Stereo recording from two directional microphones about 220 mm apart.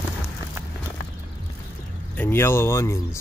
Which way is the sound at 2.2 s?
10° left (ahead or behind).